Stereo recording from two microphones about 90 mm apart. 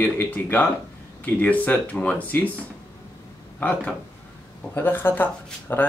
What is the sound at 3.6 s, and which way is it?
Speech, 20° left (ahead or behind).